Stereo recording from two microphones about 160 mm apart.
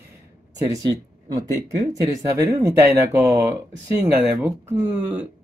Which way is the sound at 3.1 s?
10° right (ahead or behind).